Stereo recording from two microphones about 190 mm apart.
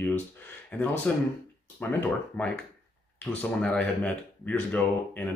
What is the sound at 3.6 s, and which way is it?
Speech, 5° left (ahead or behind).